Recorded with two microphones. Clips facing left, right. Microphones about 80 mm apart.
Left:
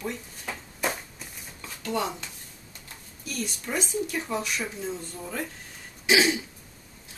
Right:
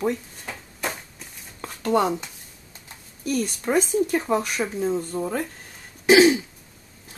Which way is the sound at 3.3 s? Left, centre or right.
Right.